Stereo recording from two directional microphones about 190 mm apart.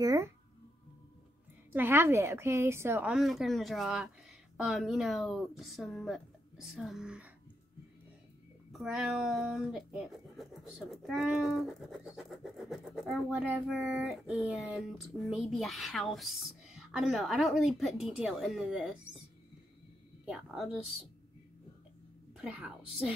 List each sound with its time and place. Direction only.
0.0 s speech: 15° right (ahead or behind)
1.7 s a woman's voice: 10° right (ahead or behind)
8.7 s speech: 5° right (ahead or behind)
20.2 s speech: 5° right (ahead or behind)
22.4 s speech: 5° right (ahead or behind)